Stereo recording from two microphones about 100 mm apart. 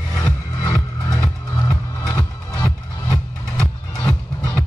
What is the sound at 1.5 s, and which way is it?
Music, 25° left (ahead or behind).